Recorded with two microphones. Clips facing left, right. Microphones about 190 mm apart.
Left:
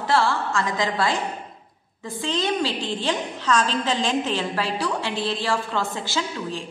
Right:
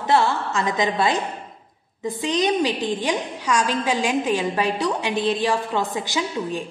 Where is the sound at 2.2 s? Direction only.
15° right (ahead or behind).